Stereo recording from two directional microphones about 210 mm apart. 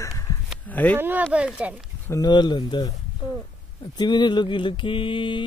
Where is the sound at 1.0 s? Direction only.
10° right (ahead or behind).